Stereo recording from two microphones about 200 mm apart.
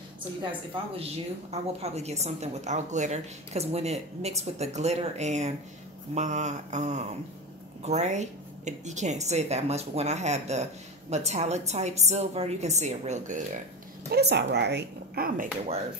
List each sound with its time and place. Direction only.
0.4 s a woman's voice: 25° right (ahead or behind)
14.1 s speech: 55° right (ahead or behind)